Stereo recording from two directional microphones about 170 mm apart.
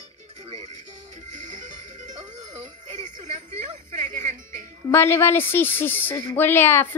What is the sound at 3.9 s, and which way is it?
Music, 50° right (ahead or behind).